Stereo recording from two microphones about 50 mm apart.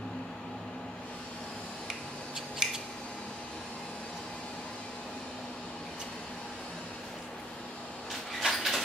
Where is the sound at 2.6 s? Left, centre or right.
Centre.